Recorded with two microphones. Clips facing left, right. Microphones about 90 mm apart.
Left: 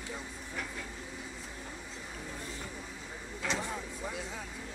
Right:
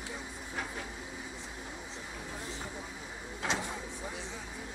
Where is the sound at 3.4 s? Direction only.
15° right (ahead or behind).